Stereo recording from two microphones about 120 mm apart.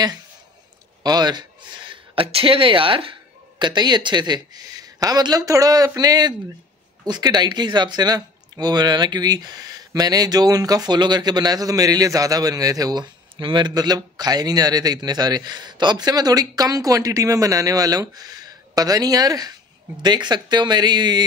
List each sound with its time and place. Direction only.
1.0 s speech: 35° right (ahead or behind)